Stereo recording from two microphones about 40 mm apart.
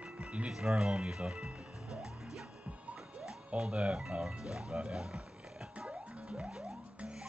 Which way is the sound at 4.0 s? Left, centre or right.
Centre.